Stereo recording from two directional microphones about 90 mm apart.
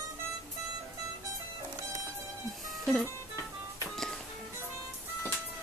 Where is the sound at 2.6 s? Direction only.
5° left (ahead or behind).